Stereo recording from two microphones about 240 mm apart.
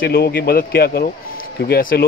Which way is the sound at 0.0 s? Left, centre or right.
Left.